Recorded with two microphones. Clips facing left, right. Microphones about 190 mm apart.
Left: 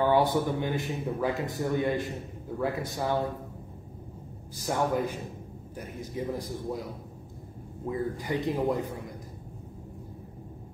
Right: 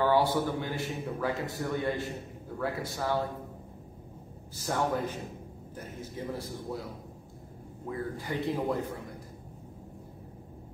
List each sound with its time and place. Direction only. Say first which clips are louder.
0.0 s a man's voice: left 2 dB; 15° left (ahead or behind)
4.6 s a man's voice: left 2 dB; 15° left (ahead or behind)